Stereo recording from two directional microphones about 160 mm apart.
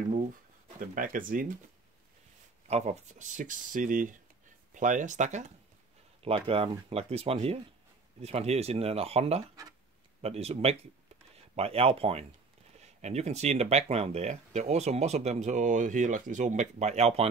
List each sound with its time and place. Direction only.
0.7 s speech: 60° right (ahead or behind)
2.7 s speech: 45° right (ahead or behind)
6.2 s speech: 35° right (ahead or behind)